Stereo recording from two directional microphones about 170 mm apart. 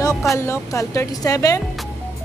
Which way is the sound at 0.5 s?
15° left (ahead or behind).